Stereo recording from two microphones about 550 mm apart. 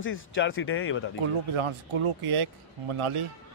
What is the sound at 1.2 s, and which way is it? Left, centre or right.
Speech, right.